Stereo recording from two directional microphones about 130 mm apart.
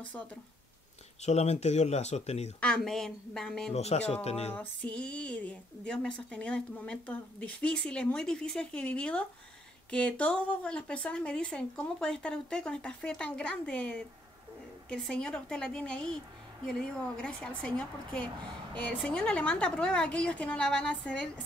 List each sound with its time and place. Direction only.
0.0 s speech: 10° left (ahead or behind)
1.2 s speech: 60° left (ahead or behind)
2.6 s a woman's voice: 5° left (ahead or behind)
3.7 s speech: 55° left (ahead or behind)
4.6 s a woman's voice: 10° left (ahead or behind)
17.2 s speech: 10° left (ahead or behind)